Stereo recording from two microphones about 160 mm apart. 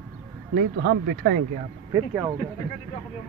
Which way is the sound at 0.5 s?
90° right.